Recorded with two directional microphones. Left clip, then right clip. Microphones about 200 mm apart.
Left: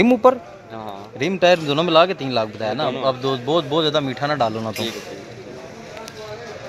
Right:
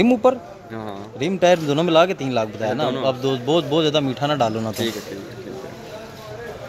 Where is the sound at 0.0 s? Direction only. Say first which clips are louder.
Left 2 dB; 5° right (ahead or behind).